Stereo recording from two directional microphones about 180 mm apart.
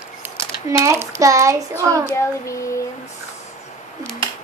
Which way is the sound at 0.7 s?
15° right (ahead or behind).